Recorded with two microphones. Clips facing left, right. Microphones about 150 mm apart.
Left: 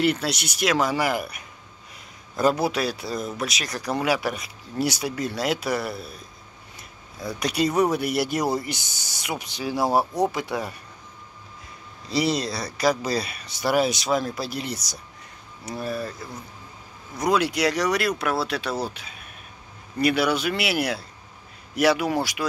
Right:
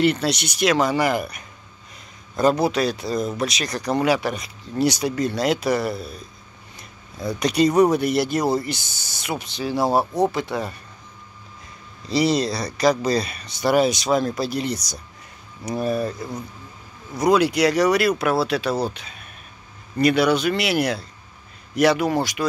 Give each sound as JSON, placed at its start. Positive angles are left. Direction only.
{"t": 0.0, "sound": "speech", "side_deg": 5}
{"t": 12.1, "sound": "speech", "side_deg": 0}
{"t": 15.6, "sound": "speech", "side_deg": -20}
{"t": 17.2, "sound": "speech", "side_deg": 0}